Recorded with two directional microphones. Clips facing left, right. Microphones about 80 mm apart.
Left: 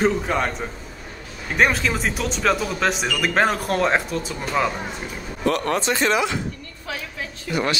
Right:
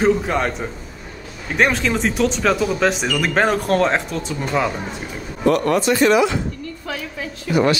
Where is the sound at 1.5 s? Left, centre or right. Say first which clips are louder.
Right 2 dB; centre.